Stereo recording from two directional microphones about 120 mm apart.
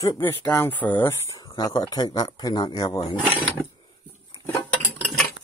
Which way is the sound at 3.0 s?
50° left (ahead or behind).